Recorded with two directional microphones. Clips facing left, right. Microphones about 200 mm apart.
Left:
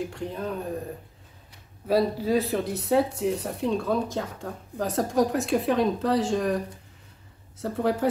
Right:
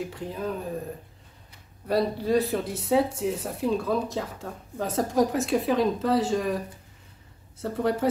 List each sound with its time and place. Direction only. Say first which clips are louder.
0.0 s speech: even; centre (ahead or behind)
1.9 s speech: left 1 dB; centre (ahead or behind)